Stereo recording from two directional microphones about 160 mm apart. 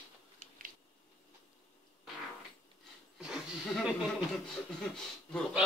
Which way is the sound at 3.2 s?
5° right (ahead or behind).